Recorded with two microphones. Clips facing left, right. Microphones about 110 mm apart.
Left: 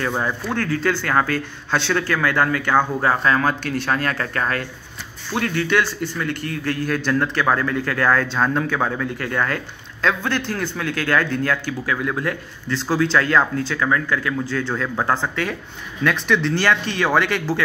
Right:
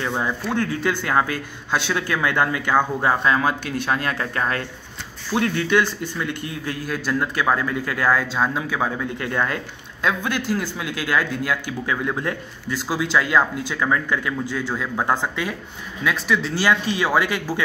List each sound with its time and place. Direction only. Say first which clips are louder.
0.2 s speech: even; 15° right (ahead or behind)
9.0 s speech: left 1 dB; 20° right (ahead or behind)
11.8 s speech: left 1 dB; 25° right (ahead or behind)
12.6 s speech: left 4 dB; 10° right (ahead or behind)